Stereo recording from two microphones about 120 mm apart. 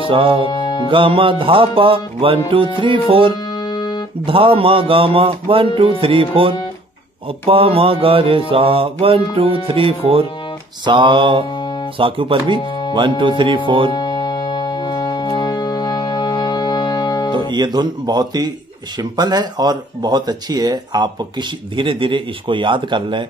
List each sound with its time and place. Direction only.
0.0 s music: 45° right (ahead or behind)
0.5 s music: 35° left (ahead or behind)
0.8 s mantra: 45° right (ahead or behind)
3.5 s music: 35° left (ahead or behind)
4.3 s mantra: 50° right (ahead or behind)
10.9 s speech: 40° right (ahead or behind)
12.0 s mantra: 45° right (ahead or behind)
13.7 s mantra: 45° right (ahead or behind)
13.9 s music: 35° left (ahead or behind)
17.3 s speech: 40° right (ahead or behind)